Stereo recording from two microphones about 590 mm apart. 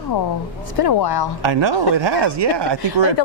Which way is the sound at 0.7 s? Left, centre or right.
Left.